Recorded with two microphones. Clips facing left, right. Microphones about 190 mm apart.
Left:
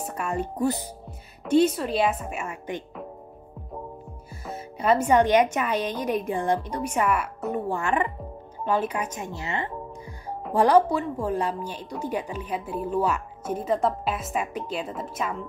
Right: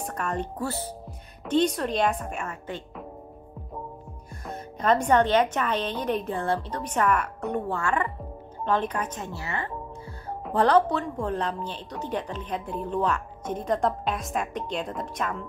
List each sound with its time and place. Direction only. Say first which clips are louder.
0.0 s speech: left 1 dB; 10° left (ahead or behind)
1.4 s a woman's voice: left 3 dB; 5° left (ahead or behind)
4.5 s a woman's voice: left 1 dB; 5° left (ahead or behind)
7.7 s a woman's voice: left 2 dB; 20° left (ahead or behind)